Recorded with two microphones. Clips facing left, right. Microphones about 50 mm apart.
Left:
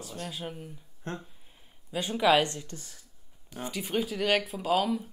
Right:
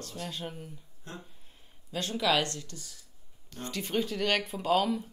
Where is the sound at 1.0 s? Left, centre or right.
Left.